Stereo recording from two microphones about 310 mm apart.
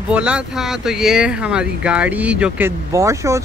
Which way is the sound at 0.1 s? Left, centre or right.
Centre.